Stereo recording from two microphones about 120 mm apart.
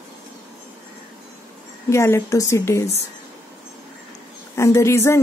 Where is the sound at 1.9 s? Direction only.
25° left (ahead or behind).